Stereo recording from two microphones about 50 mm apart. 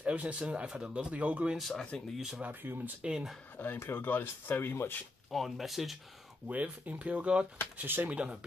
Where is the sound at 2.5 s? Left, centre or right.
Right.